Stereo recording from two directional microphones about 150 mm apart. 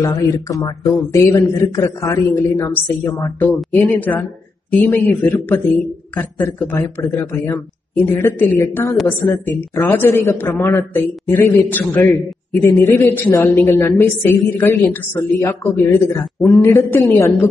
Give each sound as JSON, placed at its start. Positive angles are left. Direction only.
{"t": 0.0, "sound": "a man's voice", "side_deg": 25}